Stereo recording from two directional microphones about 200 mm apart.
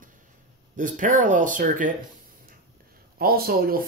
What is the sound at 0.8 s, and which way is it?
Speech, 40° right (ahead or behind).